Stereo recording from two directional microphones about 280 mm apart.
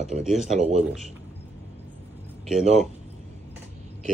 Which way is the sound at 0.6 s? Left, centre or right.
Right.